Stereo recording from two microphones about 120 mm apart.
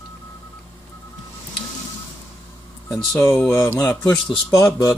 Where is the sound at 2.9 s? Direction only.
Centre (ahead or behind).